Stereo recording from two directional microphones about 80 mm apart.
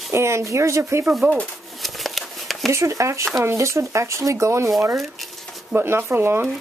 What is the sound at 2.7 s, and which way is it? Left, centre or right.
Speech, right.